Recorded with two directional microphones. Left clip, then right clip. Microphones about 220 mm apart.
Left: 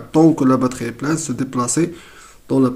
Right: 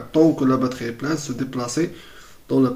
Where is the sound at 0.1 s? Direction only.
45° left (ahead or behind).